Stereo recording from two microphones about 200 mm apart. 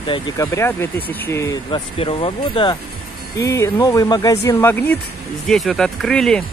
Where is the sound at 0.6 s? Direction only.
10° left (ahead or behind).